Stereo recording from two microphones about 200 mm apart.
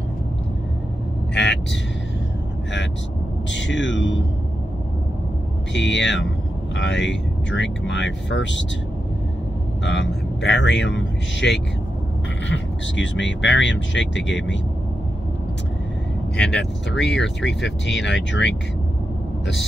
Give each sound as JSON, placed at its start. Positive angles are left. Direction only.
{"t": 1.3, "sound": "speech", "side_deg": 60}
{"t": 3.4, "sound": "speech", "side_deg": 65}
{"t": 5.7, "sound": "speech", "side_deg": 60}
{"t": 9.8, "sound": "speech", "side_deg": 60}
{"t": 16.5, "sound": "speech", "side_deg": 60}